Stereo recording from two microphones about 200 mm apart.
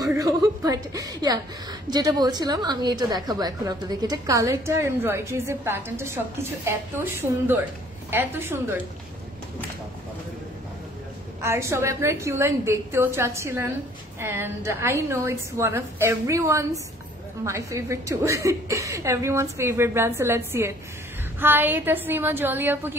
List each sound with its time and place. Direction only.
0.0 s a woman's voice: 15° right (ahead or behind)
11.4 s a woman's voice: 15° right (ahead or behind)